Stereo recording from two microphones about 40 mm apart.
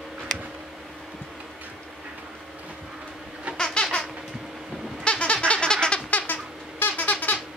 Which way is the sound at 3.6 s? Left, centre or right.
Centre.